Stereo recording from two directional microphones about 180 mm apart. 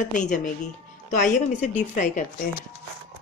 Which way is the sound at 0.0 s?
45° left (ahead or behind).